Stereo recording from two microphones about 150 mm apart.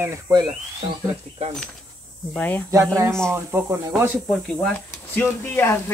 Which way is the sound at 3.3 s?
15° right (ahead or behind).